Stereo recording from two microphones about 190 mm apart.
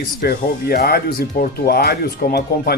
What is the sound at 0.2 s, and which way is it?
Speech, 55° left (ahead or behind).